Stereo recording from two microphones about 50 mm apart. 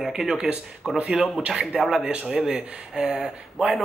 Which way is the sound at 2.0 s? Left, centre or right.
Centre.